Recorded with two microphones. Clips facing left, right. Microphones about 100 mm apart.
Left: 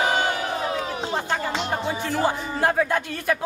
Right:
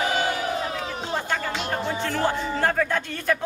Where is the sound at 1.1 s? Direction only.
15° left (ahead or behind).